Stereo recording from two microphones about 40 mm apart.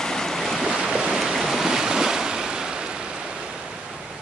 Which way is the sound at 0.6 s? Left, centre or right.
Centre.